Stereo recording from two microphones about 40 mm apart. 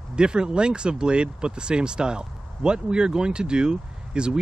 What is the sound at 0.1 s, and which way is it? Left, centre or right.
Speech, right.